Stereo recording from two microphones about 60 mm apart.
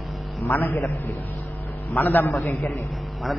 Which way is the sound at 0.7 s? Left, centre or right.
Left.